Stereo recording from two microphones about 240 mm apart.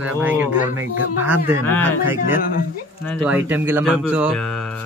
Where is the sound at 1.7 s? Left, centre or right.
Centre.